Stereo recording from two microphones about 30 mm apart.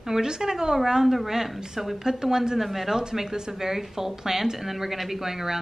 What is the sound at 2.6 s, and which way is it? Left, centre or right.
Speech, centre.